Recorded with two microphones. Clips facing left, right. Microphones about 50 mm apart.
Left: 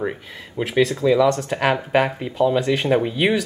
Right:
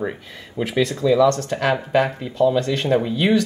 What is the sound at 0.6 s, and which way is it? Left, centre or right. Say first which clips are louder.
Speech: left 2 dB; centre.